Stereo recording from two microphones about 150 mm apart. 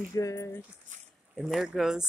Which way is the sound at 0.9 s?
55° right (ahead or behind).